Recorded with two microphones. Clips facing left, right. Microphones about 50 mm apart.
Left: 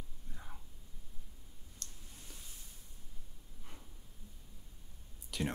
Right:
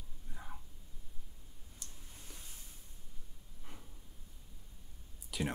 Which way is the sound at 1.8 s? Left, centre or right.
Centre.